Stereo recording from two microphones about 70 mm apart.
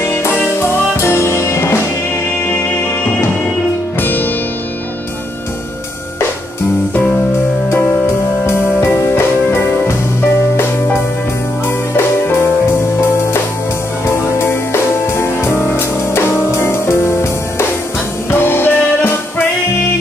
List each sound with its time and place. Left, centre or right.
0.0 s music: left
4.0 s music: left
8.8 s music: left
14.4 s music: left